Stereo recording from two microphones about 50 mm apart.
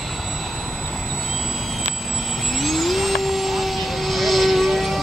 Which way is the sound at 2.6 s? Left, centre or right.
Centre.